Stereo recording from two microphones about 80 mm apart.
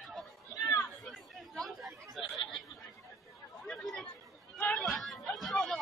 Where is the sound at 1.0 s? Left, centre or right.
Centre.